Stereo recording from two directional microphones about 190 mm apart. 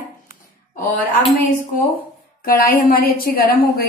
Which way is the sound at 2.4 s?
50° left (ahead or behind).